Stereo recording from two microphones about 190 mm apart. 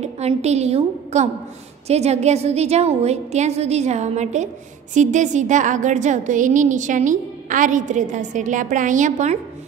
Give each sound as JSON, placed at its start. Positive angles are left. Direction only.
{"t": 0.0, "sound": "a woman's voice", "side_deg": -35}